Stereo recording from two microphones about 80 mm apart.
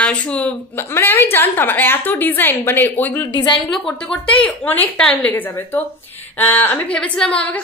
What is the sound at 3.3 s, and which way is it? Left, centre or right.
Speech, left.